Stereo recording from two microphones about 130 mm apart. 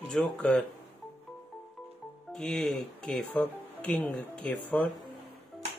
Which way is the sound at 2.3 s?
5° left (ahead or behind).